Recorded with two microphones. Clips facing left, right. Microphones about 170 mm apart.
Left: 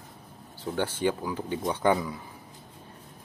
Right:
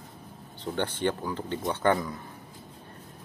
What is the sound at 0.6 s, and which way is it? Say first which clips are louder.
Speech: left 1 dB; 5° left (ahead or behind).